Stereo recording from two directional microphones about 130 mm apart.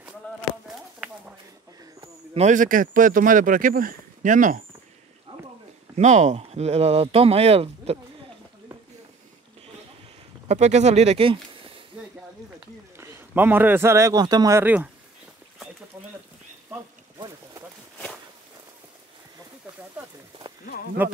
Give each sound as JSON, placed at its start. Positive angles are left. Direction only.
{"t": 2.3, "sound": "speech", "side_deg": -70}
{"t": 5.9, "sound": "speech", "side_deg": -60}
{"t": 10.5, "sound": "speech", "side_deg": -60}
{"t": 12.9, "sound": "a man's voice", "side_deg": -20}
{"t": 14.6, "sound": "speech", "side_deg": -15}
{"t": 21.0, "sound": "speech", "side_deg": -15}